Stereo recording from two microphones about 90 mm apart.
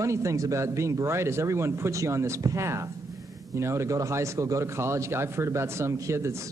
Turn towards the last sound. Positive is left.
turn(degrees=-30)  # may be behind; listen again after turning